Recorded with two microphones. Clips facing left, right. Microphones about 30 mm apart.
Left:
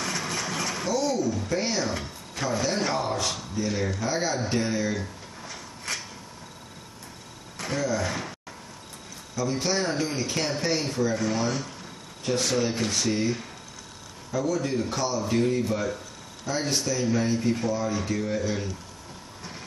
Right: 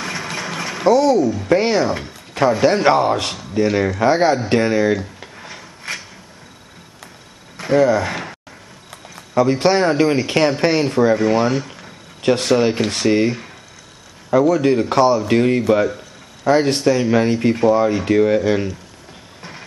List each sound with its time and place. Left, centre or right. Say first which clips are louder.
0.0 s mechanisms: right 5 dB; right
0.8 s speech: right 14 dB; right
1.9 s speech: right 8 dB; right
2.6 s speech: right 13 dB; right
5.9 s a sound: right 5 dB; right
7.7 s speech: right 13 dB; right
9.1 s speech: right 13 dB; right
12.2 s speech: right 10 dB; right